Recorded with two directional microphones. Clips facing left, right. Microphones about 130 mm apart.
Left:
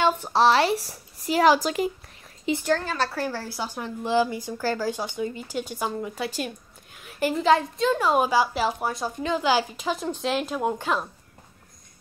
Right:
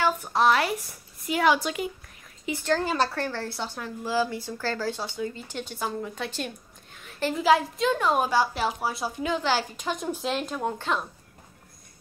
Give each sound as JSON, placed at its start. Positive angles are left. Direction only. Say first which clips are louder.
{"t": 0.0, "sound": "a woman's voice", "louder": "left 3 dB", "side_deg": 30}
{"t": 2.8, "sound": "speech", "louder": "right 2 dB", "side_deg": -15}
{"t": 3.2, "sound": "speech", "louder": "left 1 dB", "side_deg": 10}
{"t": 7.0, "sound": "a sound", "louder": "left 3 dB", "side_deg": 10}
{"t": 7.3, "sound": "a woman's voice", "louder": "even", "side_deg": 0}
{"t": 9.4, "sound": "speech", "louder": "left 4 dB", "side_deg": 10}
{"t": 10.0, "sound": "speech", "louder": "left 2 dB", "side_deg": -5}
{"t": 10.3, "sound": "speech", "louder": "left 3 dB", "side_deg": 5}